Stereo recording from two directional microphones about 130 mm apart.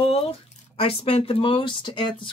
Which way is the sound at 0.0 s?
50° left (ahead or behind).